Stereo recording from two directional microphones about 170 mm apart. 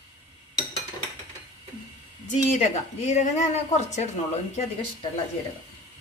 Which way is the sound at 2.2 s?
45° left (ahead or behind).